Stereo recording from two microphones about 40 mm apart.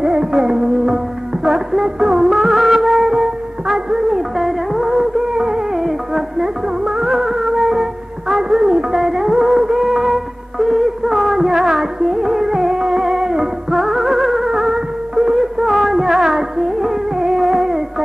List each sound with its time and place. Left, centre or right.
0.0 s music: centre